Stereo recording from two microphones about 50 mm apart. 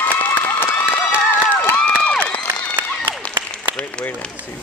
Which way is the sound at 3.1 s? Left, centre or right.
Right.